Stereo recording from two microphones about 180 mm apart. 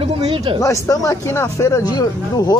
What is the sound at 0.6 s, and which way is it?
Speech, 20° left (ahead or behind).